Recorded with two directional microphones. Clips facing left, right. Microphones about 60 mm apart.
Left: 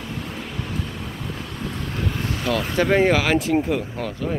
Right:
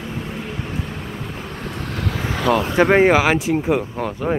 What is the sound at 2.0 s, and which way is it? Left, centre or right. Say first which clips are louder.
Vehicle: right 6 dB; right.